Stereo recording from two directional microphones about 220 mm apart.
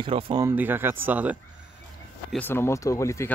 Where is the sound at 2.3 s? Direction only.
10° left (ahead or behind).